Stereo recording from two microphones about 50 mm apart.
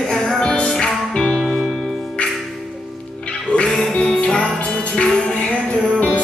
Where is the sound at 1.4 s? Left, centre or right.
Centre.